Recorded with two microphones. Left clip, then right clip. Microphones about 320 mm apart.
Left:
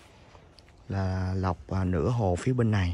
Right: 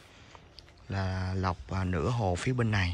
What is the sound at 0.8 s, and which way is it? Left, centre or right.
Speech, centre.